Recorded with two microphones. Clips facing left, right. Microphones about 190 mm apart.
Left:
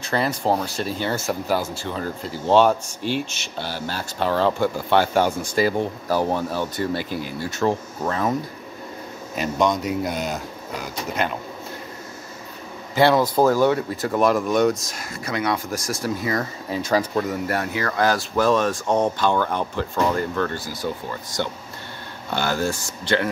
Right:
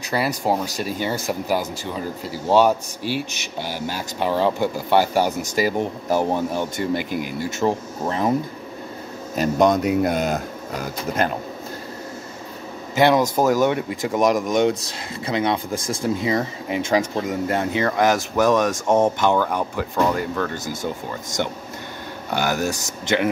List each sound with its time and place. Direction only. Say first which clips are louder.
0.1 s speech: even; 10° right (ahead or behind)
9.3 s speech: right 4 dB; 45° right (ahead or behind)
12.9 s a man's voice: even; 20° right (ahead or behind)
19.3 s speech: right 1 dB; 10° right (ahead or behind)
22.3 s speech: right 1 dB; 15° right (ahead or behind)